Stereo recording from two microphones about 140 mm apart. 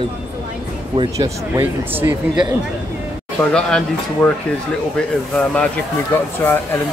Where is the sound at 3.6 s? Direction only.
5° left (ahead or behind).